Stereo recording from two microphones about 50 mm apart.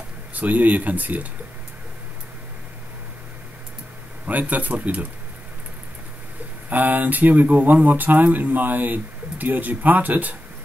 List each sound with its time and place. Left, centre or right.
0.3 s speech: right
4.3 s speech: right
6.7 s speech: right